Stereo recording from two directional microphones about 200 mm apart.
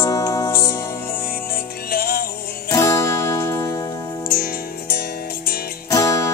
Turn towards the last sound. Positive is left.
turn(degrees=15)  # may be behind; listen again after turning